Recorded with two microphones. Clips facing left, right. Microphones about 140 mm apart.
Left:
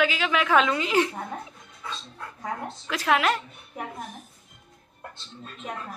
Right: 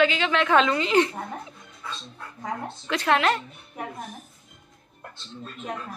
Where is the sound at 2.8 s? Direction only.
5° left (ahead or behind).